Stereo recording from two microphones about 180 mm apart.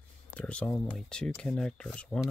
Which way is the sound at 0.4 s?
5° left (ahead or behind).